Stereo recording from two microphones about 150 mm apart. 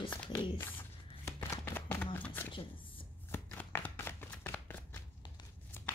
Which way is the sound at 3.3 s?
15° left (ahead or behind).